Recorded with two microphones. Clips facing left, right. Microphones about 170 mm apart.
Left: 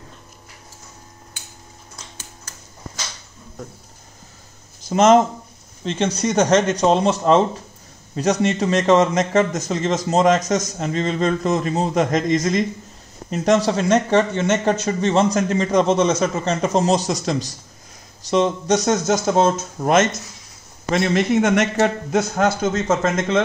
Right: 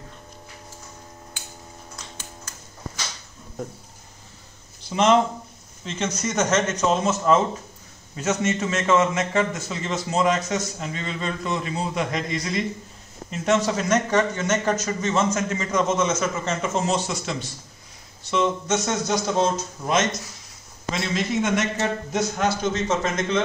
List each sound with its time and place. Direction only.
4.8 s speech: 45° left (ahead or behind)
5.9 s a man's voice: 30° left (ahead or behind); by 23.4 s 50° left (ahead or behind)